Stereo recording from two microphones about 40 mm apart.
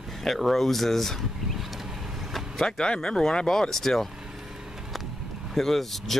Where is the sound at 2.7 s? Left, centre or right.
Centre.